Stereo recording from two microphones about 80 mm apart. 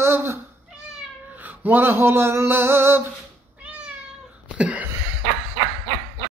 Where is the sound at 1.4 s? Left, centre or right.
Right.